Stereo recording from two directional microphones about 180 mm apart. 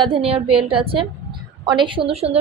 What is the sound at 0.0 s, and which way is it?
A woman's voice, 30° right (ahead or behind).